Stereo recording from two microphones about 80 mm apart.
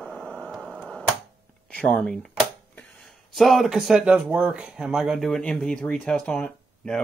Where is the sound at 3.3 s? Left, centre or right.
Centre.